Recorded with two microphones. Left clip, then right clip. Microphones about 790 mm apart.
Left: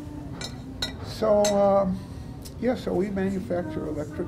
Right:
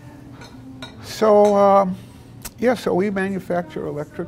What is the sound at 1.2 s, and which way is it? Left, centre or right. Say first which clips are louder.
Speech: right 7 dB; right.